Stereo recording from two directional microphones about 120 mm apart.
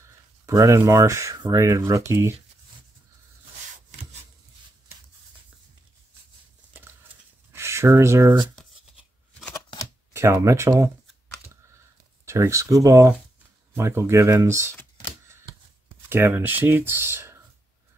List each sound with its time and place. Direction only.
0.5 s speech: 30° right (ahead or behind)
3.9 s rub: 70° right (ahead or behind)
7.5 s speech: 20° right (ahead or behind)
10.1 s speech: 25° right (ahead or behind)
12.3 s speech: 25° right (ahead or behind)
14.7 s typewriter: 15° left (ahead or behind)
16.1 s speech: 20° right (ahead or behind)